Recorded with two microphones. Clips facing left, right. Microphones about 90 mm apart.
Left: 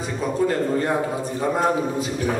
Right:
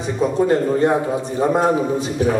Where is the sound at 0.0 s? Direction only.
25° right (ahead or behind).